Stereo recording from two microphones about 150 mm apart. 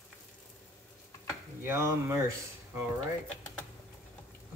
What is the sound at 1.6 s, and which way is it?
Speech, 15° right (ahead or behind).